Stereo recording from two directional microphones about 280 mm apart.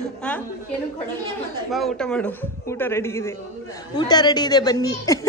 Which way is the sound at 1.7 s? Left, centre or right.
Centre.